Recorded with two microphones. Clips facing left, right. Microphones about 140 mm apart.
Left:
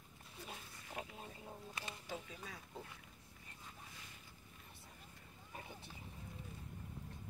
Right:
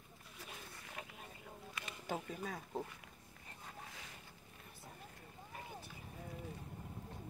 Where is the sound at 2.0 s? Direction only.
50° right (ahead or behind).